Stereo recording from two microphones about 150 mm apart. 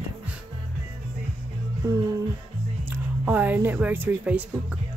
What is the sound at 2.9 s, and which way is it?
Speech, 10° right (ahead or behind).